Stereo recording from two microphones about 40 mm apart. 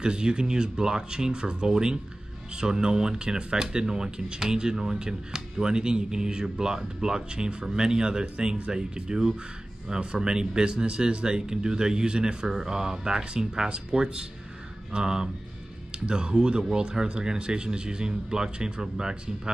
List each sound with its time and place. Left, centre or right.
0.0 s speech: right